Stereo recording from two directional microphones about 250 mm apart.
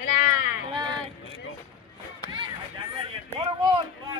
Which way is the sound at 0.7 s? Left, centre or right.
Centre.